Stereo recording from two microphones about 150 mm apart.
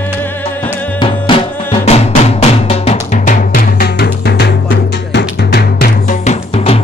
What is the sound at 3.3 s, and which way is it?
Drum, 80° left.